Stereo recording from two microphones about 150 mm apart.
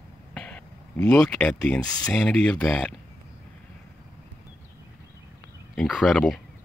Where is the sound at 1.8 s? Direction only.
25° left (ahead or behind).